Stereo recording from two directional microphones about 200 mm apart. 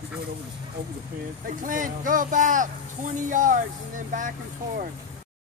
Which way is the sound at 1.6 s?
40° right (ahead or behind).